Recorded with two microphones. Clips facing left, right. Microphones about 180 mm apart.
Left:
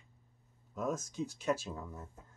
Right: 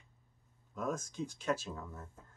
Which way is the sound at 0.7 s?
5° left (ahead or behind).